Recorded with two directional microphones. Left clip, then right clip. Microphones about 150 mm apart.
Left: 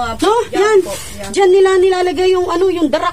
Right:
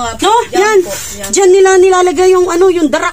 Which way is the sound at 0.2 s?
50° right (ahead or behind).